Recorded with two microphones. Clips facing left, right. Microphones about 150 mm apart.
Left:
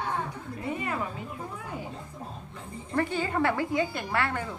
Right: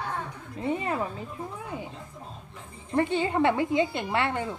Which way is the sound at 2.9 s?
20° right (ahead or behind).